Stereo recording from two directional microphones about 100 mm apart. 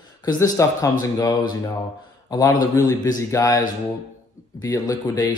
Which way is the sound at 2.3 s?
35° left (ahead or behind).